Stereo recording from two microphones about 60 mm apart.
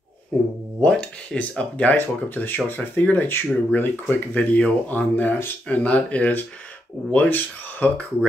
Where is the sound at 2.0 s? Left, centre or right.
Left.